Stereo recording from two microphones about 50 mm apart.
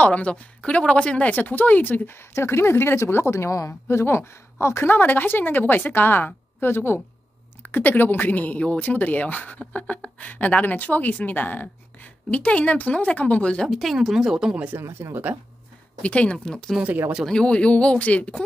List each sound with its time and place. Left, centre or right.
0.0 s speech: left
2.1 s a woman's voice: left
3.3 s a woman's voice: left
4.8 s a woman's voice: left
11.6 s speech: left
13.7 s speech: centre
14.7 s speech: right
16.0 s speech: left
16.8 s speech: centre
17.3 s speech: centre